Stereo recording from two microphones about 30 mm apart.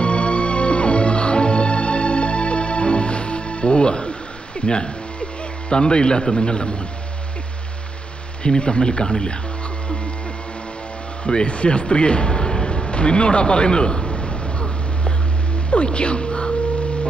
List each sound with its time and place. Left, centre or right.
0.0 s music: left
4.6 s a man's voice: left
8.5 s speech: left
11.2 s a sound: left